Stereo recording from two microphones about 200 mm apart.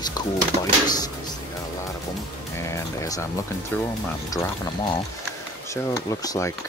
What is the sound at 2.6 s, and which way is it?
Speech, 15° left (ahead or behind).